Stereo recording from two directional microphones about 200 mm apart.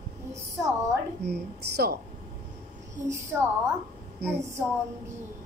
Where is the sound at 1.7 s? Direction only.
50° right (ahead or behind).